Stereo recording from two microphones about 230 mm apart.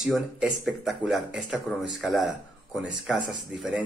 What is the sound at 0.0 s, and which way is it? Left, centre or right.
Speech, centre.